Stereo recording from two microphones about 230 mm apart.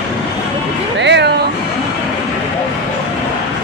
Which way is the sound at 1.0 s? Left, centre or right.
Right.